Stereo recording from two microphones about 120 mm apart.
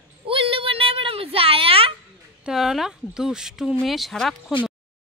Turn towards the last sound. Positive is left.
turn(degrees=0)  # may be behind; listen again after turning